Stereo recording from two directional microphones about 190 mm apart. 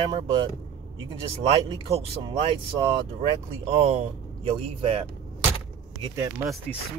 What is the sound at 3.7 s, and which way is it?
Speech, 30° right (ahead or behind).